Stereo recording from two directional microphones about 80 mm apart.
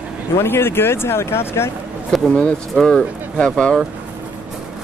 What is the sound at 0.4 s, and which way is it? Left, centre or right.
Speech, left.